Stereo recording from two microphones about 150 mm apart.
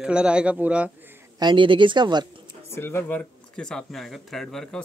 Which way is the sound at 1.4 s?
35° right (ahead or behind).